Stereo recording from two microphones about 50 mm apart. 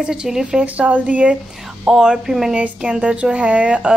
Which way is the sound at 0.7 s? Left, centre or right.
Right.